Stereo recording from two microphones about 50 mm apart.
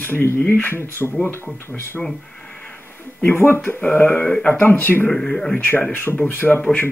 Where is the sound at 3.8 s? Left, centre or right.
Left.